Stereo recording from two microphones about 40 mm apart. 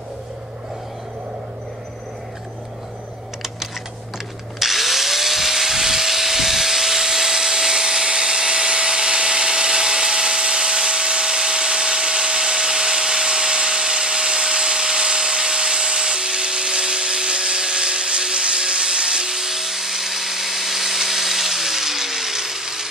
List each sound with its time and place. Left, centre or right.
4.6 s drill: centre